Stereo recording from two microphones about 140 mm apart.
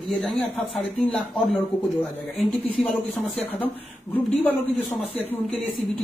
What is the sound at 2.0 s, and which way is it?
Speech, centre (ahead or behind).